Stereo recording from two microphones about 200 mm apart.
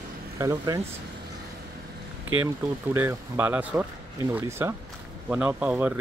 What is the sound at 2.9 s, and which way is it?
Speech, 10° right (ahead or behind).